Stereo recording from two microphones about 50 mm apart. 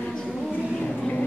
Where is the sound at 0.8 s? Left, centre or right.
Left.